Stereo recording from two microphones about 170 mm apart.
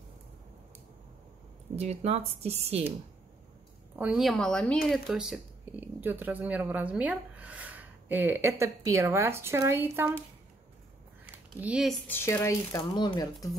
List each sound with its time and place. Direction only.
1.8 s speech: 35° right (ahead or behind)
4.0 s a woman's voice: 5° right (ahead or behind)
11.6 s a woman's voice: 5° right (ahead or behind)
12.1 s speech: 15° left (ahead or behind)